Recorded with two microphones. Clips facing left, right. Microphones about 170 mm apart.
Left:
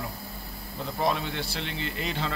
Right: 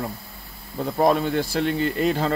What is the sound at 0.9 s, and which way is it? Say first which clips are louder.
Speech: right 9 dB; 50° right (ahead or behind).